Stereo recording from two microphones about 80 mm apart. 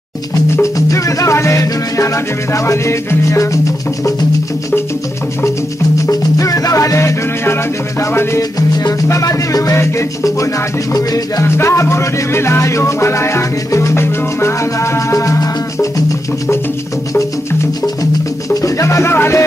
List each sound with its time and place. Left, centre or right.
0.6 s music: left
6.0 s music: left
8.4 s music: left
11.4 s music: left
18.5 s music: left